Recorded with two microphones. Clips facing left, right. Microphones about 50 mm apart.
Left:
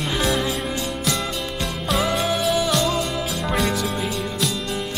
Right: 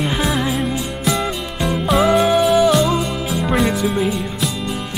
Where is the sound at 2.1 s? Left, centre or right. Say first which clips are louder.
Right 8 dB; centre.